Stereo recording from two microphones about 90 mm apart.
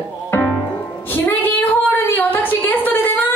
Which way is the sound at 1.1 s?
20° left (ahead or behind).